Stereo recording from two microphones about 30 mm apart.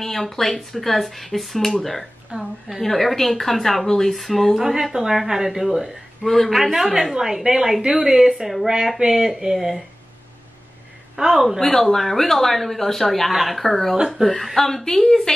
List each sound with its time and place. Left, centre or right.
0.0 s speech: centre
2.3 s a woman's voice: right
2.8 s speech: centre
3.8 s speech: centre
4.1 s a woman's voice: centre
6.2 s a woman's voice: centre
8.6 s a woman's voice: centre
11.1 s a woman's voice: centre
11.6 s speech: centre